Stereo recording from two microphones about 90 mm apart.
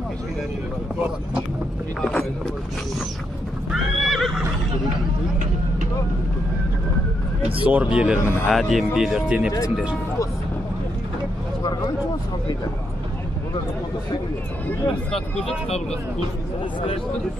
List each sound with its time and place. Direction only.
2.0 s speech: 10° left (ahead or behind)
3.7 s horse: centre (ahead or behind)
7.6 s speech: 15° right (ahead or behind)
8.2 s speech: 30° left (ahead or behind)
8.5 s speech: centre (ahead or behind)